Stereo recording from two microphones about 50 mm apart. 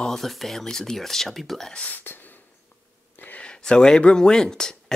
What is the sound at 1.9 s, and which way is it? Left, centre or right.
Speech, left.